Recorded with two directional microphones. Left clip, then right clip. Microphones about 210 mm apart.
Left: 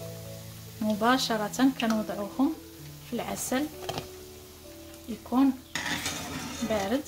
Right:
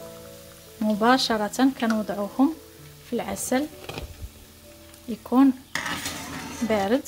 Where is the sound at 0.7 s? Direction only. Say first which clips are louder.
Right 5 dB; 25° right (ahead or behind).